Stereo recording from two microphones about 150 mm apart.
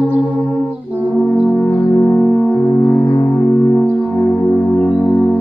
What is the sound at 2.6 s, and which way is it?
Music, 20° left (ahead or behind).